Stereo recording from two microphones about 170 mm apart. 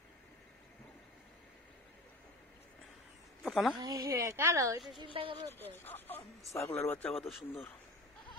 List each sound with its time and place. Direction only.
3.4 s a woman's voice: centre (ahead or behind)
3.8 s speech: 20° right (ahead or behind)
5.0 s speech: 30° right (ahead or behind)
5.5 s speech: 15° left (ahead or behind)